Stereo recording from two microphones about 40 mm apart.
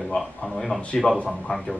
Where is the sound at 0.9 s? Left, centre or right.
Left.